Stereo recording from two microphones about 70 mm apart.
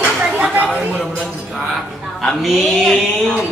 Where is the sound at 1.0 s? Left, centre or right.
Centre.